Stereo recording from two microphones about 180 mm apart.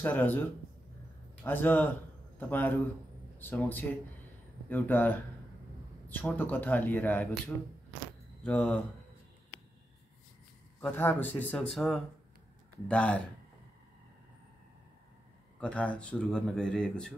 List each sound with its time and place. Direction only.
0.0 s speech: 10° left (ahead or behind)
10.8 s speech: 10° left (ahead or behind)
15.6 s speech: 5° left (ahead or behind)